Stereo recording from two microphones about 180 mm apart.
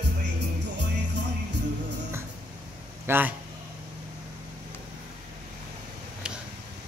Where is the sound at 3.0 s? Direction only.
10° right (ahead or behind).